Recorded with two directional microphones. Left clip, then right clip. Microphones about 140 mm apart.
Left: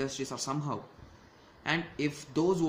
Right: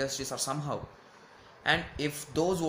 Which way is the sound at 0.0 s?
20° left (ahead or behind).